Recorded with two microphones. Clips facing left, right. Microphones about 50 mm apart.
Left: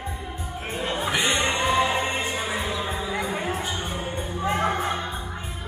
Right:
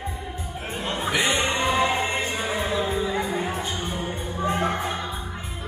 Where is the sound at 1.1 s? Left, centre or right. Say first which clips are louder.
Right 2 dB; centre.